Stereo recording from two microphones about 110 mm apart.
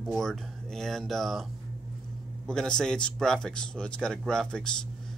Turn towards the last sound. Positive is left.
turn(degrees=5)  # may be behind; listen again after turning